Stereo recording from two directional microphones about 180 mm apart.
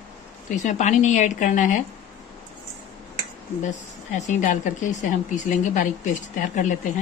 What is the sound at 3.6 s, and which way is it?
A woman's voice, 40° left (ahead or behind).